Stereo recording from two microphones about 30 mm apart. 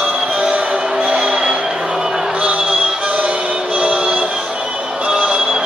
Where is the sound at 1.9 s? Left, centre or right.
Centre.